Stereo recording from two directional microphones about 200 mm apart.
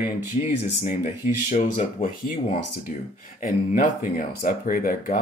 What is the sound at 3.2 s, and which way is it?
Speech, 45° left (ahead or behind).